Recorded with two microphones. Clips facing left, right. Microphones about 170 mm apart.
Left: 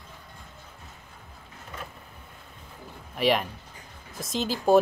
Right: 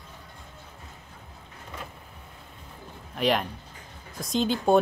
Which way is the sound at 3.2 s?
Centre (ahead or behind).